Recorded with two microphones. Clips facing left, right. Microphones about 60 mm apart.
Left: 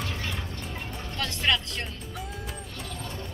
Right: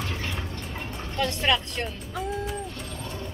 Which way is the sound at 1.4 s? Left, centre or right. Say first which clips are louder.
Left 1 dB; centre.